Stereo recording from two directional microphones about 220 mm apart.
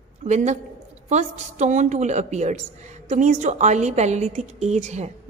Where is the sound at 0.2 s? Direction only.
30° right (ahead or behind).